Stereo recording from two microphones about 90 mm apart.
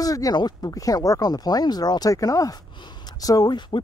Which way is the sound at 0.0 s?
40° left (ahead or behind).